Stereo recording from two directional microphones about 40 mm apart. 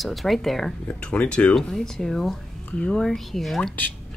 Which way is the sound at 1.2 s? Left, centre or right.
Left.